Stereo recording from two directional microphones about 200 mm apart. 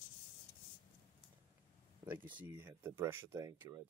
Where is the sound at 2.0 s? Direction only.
10° right (ahead or behind).